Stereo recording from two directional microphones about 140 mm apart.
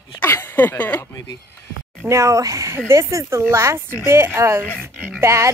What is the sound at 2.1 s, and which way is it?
Speech, 20° right (ahead or behind).